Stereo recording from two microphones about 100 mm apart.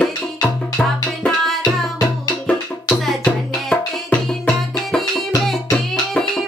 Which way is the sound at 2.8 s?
5° left (ahead or behind).